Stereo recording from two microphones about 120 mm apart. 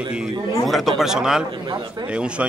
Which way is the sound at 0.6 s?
Centre (ahead or behind).